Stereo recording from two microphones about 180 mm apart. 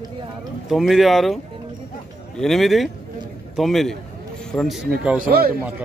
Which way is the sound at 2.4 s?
Centre (ahead or behind).